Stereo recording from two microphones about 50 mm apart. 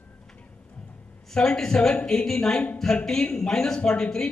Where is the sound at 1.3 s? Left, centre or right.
Centre.